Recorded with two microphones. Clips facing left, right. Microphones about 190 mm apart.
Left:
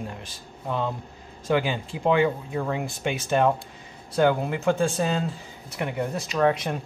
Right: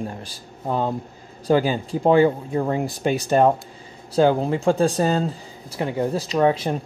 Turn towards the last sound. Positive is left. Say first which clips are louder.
# right 4 dB
turn(degrees=-30)  # may be behind; listen again after turning